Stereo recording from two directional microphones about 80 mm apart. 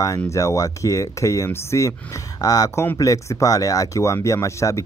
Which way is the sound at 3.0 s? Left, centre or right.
Left.